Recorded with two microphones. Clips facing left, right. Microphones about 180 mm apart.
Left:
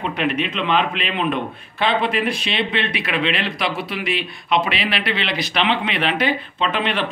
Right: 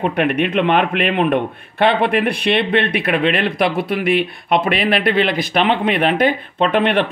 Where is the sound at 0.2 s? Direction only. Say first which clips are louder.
Right 6 dB; 55° right (ahead or behind).